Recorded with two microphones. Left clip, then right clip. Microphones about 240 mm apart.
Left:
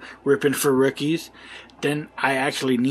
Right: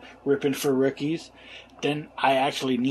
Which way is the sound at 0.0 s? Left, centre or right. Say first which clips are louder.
Left 4 dB; left.